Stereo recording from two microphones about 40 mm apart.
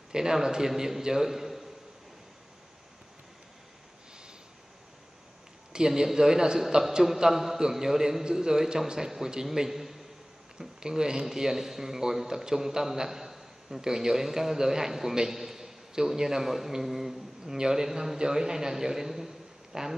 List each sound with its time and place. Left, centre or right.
0.1 s speech: centre
5.7 s speech: centre
10.8 s speech: centre